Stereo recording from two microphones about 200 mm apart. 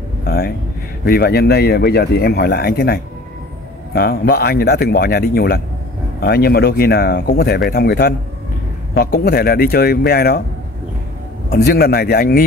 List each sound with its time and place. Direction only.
0.2 s a sound: 50° left (ahead or behind)
1.0 s speech: 50° left (ahead or behind)
11.5 s speech: 50° left (ahead or behind)